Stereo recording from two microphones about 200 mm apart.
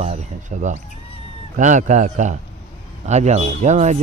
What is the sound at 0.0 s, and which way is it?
Speech, 35° right (ahead or behind).